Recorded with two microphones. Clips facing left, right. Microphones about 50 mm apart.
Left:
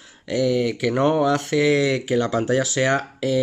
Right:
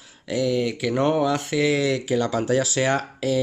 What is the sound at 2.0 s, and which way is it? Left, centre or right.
Speech, centre.